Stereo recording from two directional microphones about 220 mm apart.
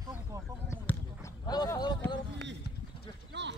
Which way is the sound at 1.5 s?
20° left (ahead or behind).